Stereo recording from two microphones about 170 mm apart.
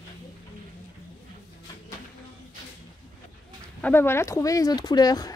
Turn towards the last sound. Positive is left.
turn(degrees=25)  # may be behind; listen again after turning